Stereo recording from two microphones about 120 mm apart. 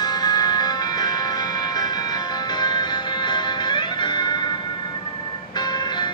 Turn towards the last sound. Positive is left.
turn(degrees=35)  # may be behind; listen again after turning